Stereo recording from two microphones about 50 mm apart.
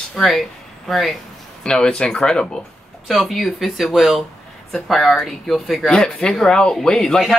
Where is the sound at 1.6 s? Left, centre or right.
Centre.